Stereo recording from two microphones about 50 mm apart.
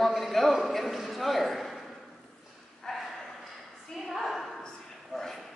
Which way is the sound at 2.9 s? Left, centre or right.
Centre.